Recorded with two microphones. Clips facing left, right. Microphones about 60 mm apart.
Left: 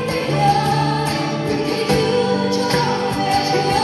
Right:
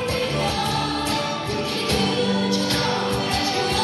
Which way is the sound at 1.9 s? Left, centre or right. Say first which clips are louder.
Left 5 dB; left.